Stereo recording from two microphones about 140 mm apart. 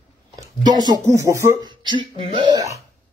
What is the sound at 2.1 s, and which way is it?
Speech, 35° right (ahead or behind).